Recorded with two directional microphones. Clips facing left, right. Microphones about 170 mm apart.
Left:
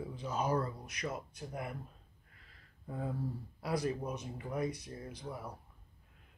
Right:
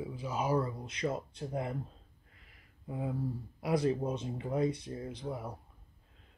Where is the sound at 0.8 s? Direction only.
25° right (ahead or behind).